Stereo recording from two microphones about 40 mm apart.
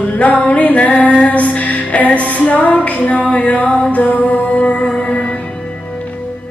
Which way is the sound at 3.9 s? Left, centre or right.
Left.